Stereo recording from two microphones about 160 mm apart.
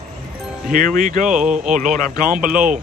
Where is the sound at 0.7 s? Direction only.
55° right (ahead or behind).